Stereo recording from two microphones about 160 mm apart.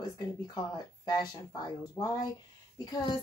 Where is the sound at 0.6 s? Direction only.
25° left (ahead or behind).